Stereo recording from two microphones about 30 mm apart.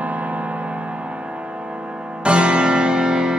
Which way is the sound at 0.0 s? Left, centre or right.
Right.